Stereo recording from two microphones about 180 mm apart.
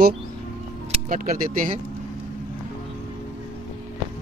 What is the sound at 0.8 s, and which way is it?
Speech, 40° right (ahead or behind).